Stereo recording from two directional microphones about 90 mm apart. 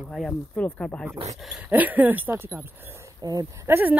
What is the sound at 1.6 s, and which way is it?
Speech, 20° right (ahead or behind).